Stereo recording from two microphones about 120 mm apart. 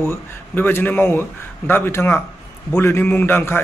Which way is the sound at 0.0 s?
20° left (ahead or behind).